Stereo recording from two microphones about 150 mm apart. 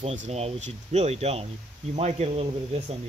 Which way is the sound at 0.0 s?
45° right (ahead or behind).